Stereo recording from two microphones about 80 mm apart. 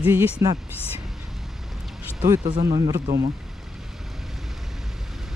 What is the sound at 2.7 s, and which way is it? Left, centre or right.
Speech, right.